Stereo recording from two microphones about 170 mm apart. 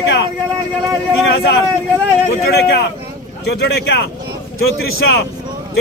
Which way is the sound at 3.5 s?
75° left (ahead or behind).